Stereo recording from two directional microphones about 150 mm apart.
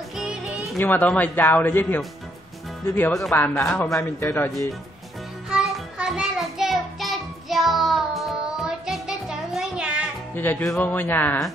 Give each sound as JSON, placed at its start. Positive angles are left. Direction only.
{"t": 0.1, "sound": "music", "side_deg": -5}
{"t": 0.7, "sound": "speech", "side_deg": 10}
{"t": 5.5, "sound": "child singing", "side_deg": -5}
{"t": 10.3, "sound": "music", "side_deg": 15}
{"t": 10.7, "sound": "speech", "side_deg": 10}